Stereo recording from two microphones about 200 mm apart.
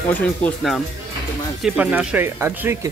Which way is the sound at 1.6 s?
5° right (ahead or behind).